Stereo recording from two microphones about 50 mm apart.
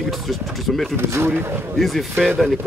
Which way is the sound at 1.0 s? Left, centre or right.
Right.